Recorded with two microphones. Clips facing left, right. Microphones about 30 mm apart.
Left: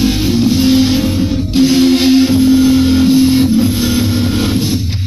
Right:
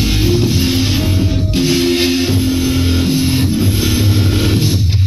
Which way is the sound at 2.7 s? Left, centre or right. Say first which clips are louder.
Left 6 dB; centre.